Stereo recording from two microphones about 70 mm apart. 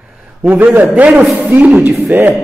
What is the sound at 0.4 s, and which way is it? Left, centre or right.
A man's voice, right.